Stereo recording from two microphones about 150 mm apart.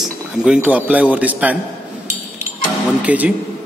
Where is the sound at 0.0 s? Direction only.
5° right (ahead or behind).